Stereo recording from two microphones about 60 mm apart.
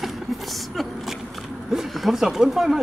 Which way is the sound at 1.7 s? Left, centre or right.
Centre.